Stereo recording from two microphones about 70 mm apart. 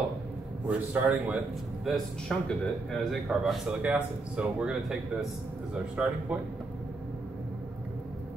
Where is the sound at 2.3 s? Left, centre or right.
Centre.